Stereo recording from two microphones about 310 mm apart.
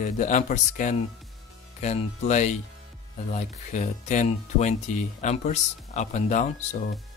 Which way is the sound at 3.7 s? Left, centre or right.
Left.